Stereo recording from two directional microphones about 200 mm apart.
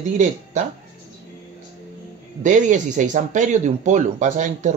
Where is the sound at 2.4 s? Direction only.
40° right (ahead or behind).